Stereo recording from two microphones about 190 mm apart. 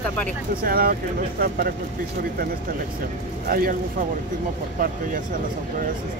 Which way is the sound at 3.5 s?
50° right (ahead or behind).